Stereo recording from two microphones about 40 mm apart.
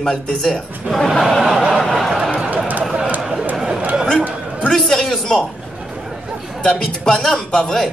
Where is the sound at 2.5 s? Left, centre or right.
Right.